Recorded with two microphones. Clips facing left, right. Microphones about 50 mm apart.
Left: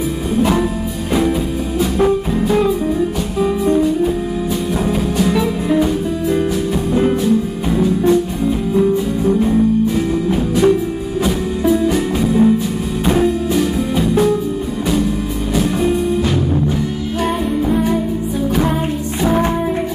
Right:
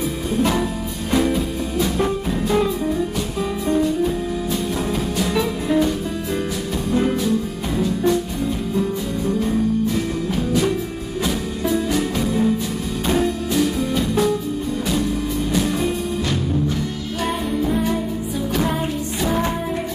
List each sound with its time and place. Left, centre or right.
0.4 s music: centre
2.0 s music: centre
5.2 s music: centre
6.9 s music: centre
9.3 s music: centre
11.2 s music: centre
17.6 s music: centre